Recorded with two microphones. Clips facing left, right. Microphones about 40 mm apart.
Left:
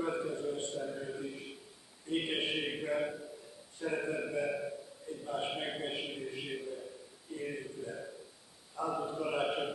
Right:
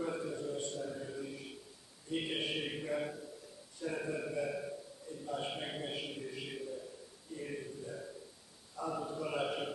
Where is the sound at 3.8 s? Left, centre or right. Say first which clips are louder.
Left 3 dB; centre.